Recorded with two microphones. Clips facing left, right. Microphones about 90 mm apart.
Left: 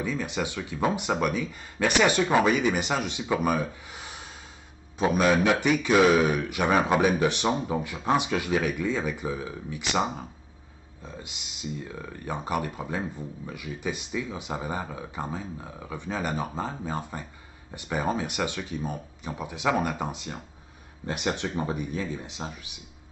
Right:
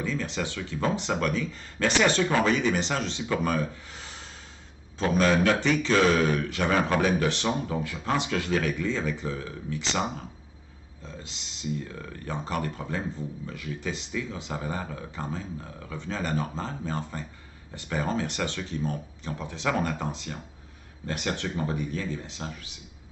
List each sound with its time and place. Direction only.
0.0 s speech: 15° left (ahead or behind)